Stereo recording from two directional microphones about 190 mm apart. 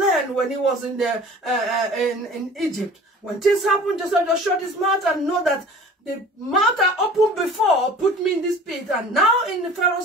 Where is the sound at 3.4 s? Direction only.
Centre (ahead or behind).